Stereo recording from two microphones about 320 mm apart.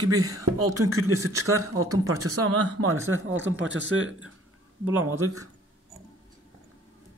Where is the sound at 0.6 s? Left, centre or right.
Right.